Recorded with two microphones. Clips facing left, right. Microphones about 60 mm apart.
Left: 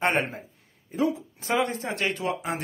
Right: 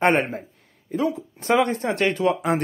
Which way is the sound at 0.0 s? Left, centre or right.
Right.